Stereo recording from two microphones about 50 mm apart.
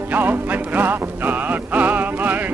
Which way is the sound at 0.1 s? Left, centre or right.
Right.